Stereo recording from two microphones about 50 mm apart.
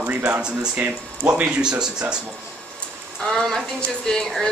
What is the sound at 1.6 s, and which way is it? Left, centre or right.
Speech, centre.